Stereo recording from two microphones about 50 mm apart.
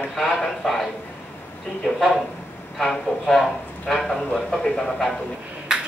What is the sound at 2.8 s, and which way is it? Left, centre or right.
A man's voice, centre.